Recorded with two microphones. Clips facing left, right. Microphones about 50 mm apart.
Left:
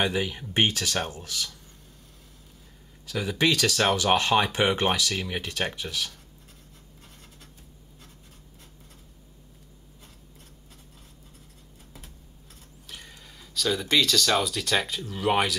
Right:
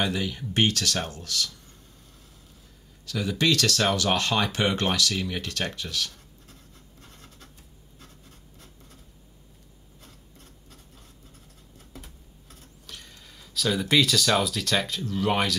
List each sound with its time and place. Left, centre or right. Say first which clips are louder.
0.0 s speech: left 1 dB; centre
3.1 s speech: even; centre
7.0 s writing: right 2 dB; centre
11.9 s computer keyboard: right 4 dB; centre